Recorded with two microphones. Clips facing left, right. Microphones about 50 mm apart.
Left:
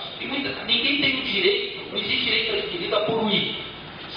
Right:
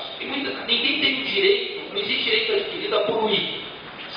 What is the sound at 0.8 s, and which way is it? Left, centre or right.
Speech, left.